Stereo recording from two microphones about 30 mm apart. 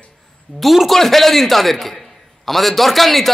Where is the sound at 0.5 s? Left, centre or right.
Left.